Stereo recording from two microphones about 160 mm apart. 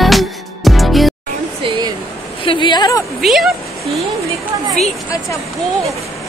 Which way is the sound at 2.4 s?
30° left (ahead or behind).